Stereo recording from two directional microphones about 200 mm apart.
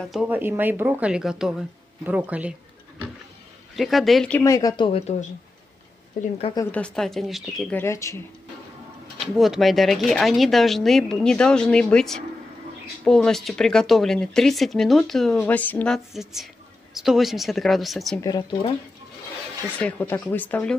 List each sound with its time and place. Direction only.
0.1 s speech: 5° right (ahead or behind)
3.7 s speech: centre (ahead or behind)
4.4 s speech: 15° left (ahead or behind)
6.5 s speech: 10° left (ahead or behind)
7.8 s speech: 15° left (ahead or behind)
9.2 s speech: centre (ahead or behind)
18.2 s speech: 20° left (ahead or behind)
19.8 s speech: 10° left (ahead or behind)